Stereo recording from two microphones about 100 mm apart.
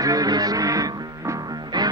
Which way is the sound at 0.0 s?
35° right (ahead or behind).